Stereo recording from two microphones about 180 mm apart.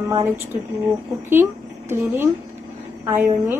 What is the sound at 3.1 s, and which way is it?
Speech, 10° right (ahead or behind).